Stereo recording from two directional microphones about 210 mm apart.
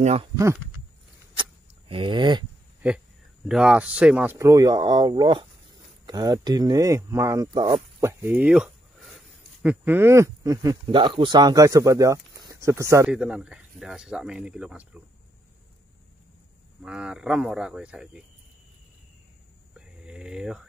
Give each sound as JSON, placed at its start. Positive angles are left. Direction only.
{"t": 0.0, "sound": "speech", "side_deg": -30}
{"t": 1.3, "sound": "a sound", "side_deg": -25}
{"t": 3.4, "sound": "speech", "side_deg": -5}
{"t": 8.0, "sound": "speech", "side_deg": -10}
{"t": 16.8, "sound": "speech", "side_deg": -5}
{"t": 20.1, "sound": "speech", "side_deg": -5}